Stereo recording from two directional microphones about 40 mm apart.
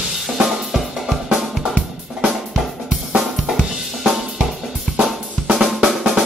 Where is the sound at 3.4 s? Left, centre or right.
Centre.